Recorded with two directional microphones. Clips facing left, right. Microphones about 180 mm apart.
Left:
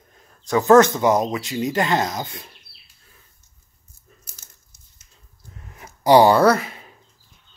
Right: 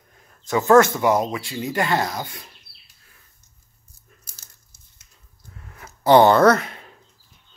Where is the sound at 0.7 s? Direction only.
20° left (ahead or behind).